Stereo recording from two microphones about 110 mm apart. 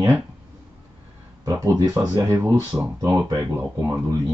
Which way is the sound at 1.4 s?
25° right (ahead or behind).